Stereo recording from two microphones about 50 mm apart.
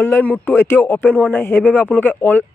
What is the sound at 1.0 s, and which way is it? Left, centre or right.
Speech, left.